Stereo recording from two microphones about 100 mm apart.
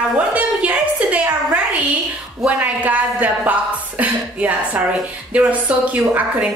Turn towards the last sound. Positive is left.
turn(degrees=-15)  # may be behind; listen again after turning